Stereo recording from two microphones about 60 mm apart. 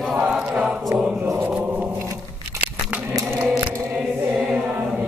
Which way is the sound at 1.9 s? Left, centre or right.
Right.